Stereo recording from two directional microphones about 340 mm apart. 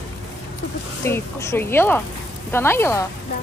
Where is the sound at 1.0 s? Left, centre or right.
Centre.